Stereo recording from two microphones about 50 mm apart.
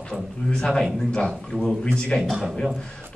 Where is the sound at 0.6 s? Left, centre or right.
Centre.